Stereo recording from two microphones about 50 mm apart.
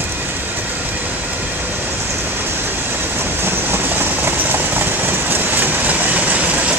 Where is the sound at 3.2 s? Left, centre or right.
Right.